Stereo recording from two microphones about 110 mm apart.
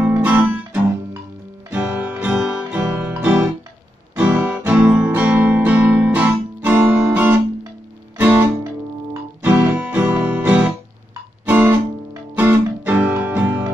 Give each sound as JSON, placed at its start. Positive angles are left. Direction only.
{"t": 0.0, "sound": "music", "side_deg": -15}
{"t": 1.7, "sound": "music", "side_deg": -15}